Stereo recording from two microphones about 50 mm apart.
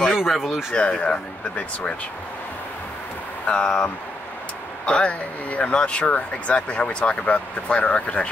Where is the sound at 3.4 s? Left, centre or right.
Left.